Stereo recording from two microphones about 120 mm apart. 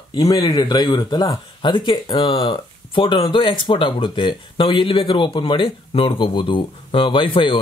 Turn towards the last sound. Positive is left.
turn(degrees=45)  # may be behind; listen again after turning